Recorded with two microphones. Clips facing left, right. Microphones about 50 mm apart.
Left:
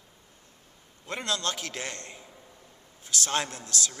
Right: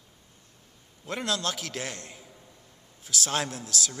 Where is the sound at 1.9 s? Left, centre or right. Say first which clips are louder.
Even; centre.